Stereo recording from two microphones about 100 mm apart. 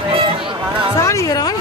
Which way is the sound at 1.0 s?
30° left (ahead or behind).